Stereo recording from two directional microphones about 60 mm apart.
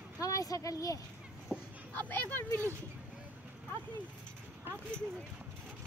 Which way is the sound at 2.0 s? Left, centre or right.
Left.